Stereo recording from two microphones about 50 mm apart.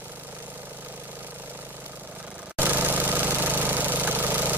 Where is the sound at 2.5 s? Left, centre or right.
Right.